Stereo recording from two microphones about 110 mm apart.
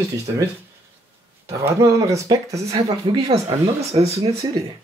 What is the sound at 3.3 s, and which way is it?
Speech, 65° right (ahead or behind).